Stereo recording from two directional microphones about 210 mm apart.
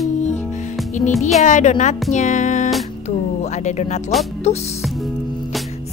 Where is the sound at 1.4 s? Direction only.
35° left (ahead or behind).